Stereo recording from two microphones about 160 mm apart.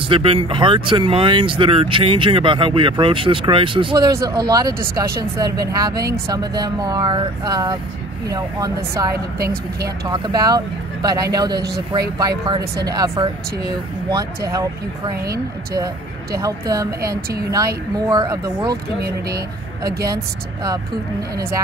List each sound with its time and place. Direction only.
0.1 s speech: 35° right (ahead or behind)
9.4 s speech: 70° right (ahead or behind)
10.0 s speech: 25° right (ahead or behind)
17.9 s speech: 25° right (ahead or behind)
19.0 s speech: 75° right (ahead or behind)